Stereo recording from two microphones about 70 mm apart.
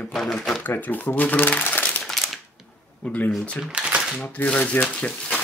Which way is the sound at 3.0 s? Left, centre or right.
Left.